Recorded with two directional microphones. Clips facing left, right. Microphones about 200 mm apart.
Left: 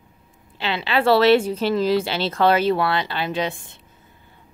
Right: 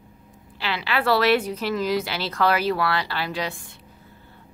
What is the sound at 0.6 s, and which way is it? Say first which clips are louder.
Speech: left 4 dB; 25° left (ahead or behind).